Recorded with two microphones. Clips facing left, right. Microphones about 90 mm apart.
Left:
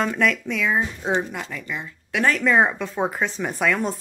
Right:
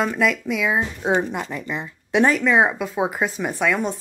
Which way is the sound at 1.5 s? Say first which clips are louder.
Right 3 dB; 25° right (ahead or behind).